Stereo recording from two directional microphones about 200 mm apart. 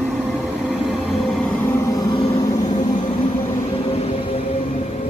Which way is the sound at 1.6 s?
15° left (ahead or behind).